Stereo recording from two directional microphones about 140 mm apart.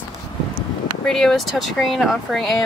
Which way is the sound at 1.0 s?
5° left (ahead or behind).